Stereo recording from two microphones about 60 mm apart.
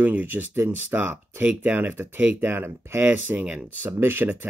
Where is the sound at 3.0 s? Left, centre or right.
Right.